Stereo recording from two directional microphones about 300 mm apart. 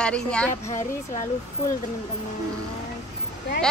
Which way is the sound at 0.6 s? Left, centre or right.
Left.